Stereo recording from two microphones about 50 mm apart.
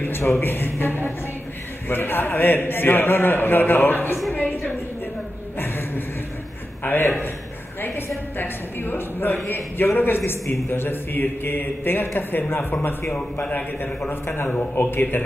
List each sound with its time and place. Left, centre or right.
0.0 s a man's voice: left
4.3 s a sound: left
8.4 s a man's voice: left
13.1 s a man's voice: left
14.0 s a man's voice: left
14.8 s a man's voice: left